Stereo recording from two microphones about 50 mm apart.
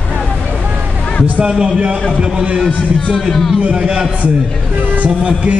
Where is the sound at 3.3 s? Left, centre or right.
Centre.